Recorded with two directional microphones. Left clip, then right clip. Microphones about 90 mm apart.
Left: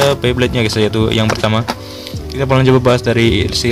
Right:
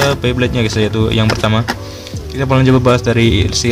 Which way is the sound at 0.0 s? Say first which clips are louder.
Left 1 dB; 35° left (ahead or behind).